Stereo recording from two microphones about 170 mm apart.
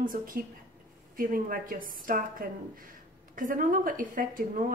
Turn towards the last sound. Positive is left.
turn(degrees=-55)  # may be behind; listen again after turning